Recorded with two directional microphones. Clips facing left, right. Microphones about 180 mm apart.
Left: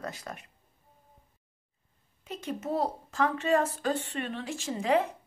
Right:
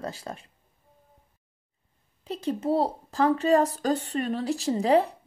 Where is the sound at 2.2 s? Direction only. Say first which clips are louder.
Right 7 dB; 30° right (ahead or behind).